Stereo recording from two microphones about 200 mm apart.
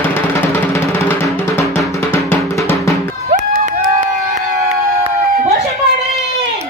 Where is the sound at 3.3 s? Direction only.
40° right (ahead or behind).